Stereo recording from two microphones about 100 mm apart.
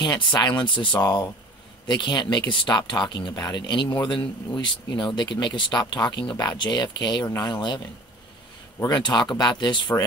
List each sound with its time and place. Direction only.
0.0 s speech: 45° left (ahead or behind)